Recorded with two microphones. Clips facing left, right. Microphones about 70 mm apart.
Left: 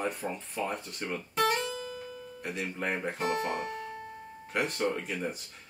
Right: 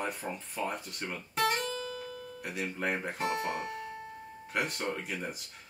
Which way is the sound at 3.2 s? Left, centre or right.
Left.